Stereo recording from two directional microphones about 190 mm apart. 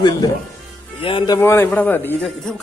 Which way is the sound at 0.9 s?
25° left (ahead or behind).